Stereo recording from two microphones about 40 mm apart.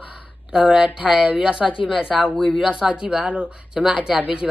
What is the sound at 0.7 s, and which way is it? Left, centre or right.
Speech, right.